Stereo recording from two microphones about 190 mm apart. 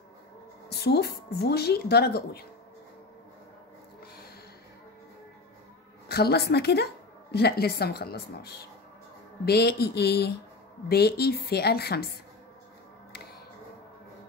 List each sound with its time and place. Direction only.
0.7 s speech: 55° left (ahead or behind)
6.0 s a woman's voice: 55° left (ahead or behind)